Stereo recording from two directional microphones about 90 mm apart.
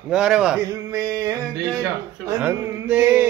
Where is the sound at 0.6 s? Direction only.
40° right (ahead or behind).